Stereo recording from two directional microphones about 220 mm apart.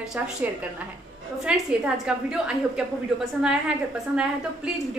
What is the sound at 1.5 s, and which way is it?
A woman's voice, 5° right (ahead or behind).